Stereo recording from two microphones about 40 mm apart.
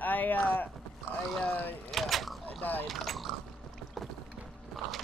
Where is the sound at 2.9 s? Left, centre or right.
Centre.